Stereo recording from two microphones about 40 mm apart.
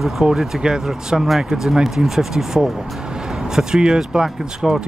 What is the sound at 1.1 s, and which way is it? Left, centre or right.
Speech, centre.